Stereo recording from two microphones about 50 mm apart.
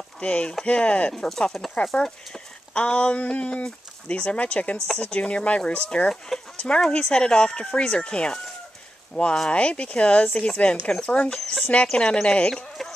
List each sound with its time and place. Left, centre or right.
0.2 s speech: centre
1.2 s speech: centre
2.0 s a sound: centre
2.8 s speech: left
6.0 s speech: centre
11.6 s speech: left